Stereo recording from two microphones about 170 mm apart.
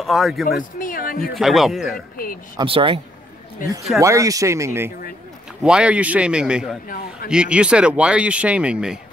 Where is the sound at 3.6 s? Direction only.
50° left (ahead or behind).